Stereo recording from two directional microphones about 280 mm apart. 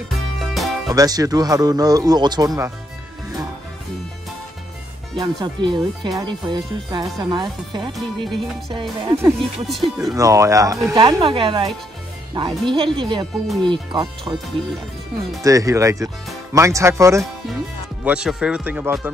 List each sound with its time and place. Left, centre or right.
0.1 s music: centre
0.8 s speech: centre
5.2 s speech: centre
7.9 s speech: centre
8.6 s speech: centre
9.9 s speech: centre
15.4 s speech: centre